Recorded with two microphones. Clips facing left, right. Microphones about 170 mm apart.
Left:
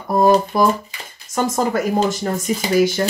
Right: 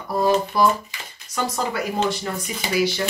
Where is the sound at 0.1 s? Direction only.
45° left (ahead or behind).